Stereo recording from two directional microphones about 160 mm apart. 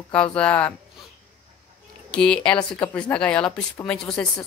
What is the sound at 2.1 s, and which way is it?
Speech, 5° left (ahead or behind).